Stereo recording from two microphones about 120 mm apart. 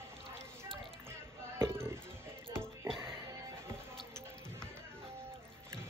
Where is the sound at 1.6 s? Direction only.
20° right (ahead or behind).